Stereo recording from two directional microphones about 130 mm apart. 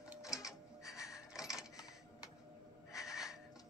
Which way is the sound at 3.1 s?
5° right (ahead or behind).